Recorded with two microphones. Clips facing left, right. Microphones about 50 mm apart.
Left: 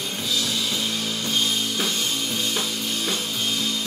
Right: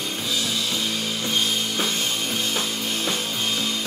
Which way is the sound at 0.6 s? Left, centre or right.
Centre.